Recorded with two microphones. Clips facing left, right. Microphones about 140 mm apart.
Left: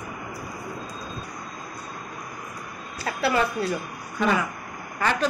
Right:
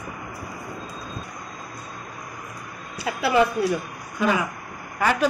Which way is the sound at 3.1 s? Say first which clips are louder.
Right 3 dB; 15° right (ahead or behind).